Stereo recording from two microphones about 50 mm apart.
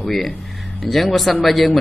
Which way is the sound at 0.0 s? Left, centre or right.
Centre.